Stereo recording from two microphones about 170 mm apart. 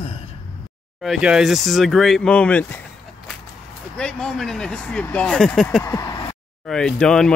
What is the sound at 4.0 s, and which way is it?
Speech, 5° left (ahead or behind).